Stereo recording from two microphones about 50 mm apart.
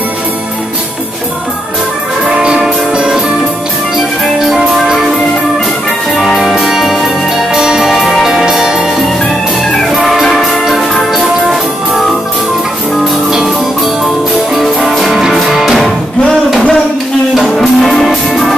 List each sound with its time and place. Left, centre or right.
2.4 s music: centre
4.5 s music: centre
6.1 s music: centre
9.9 s music: centre
13.0 s music: centre
14.5 s music: centre
17.4 s music: centre